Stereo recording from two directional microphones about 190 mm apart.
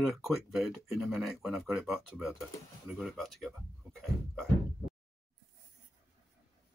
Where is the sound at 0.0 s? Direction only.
Centre (ahead or behind).